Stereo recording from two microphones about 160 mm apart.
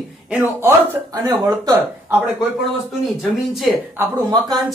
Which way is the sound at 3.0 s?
Centre (ahead or behind).